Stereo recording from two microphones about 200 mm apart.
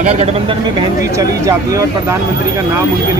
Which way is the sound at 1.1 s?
15° right (ahead or behind).